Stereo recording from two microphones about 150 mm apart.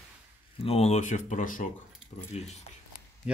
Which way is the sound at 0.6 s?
45° left (ahead or behind).